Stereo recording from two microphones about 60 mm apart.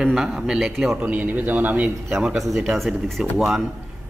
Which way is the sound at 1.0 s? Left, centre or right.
Right.